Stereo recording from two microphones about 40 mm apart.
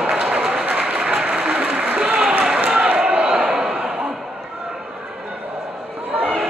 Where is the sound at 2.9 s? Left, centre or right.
Right.